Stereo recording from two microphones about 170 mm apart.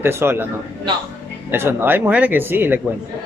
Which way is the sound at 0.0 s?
15° right (ahead or behind).